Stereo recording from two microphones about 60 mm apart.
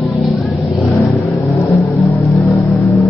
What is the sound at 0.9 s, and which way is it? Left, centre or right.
Vehicle, left.